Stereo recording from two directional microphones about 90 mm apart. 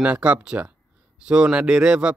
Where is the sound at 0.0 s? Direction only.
15° right (ahead or behind).